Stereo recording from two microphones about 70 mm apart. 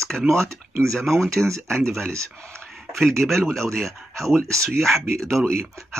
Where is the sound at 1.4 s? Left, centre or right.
Right.